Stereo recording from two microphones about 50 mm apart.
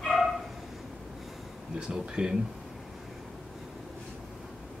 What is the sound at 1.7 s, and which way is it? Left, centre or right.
Speech, centre.